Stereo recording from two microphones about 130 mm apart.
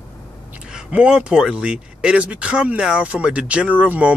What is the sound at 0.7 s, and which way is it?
A man's voice, 5° right (ahead or behind).